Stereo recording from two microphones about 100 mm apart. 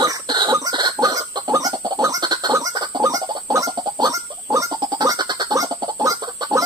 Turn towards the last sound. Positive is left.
turn(degrees=-35)  # may be behind; listen again after turning